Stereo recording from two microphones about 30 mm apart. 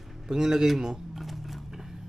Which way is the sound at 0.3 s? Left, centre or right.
Centre.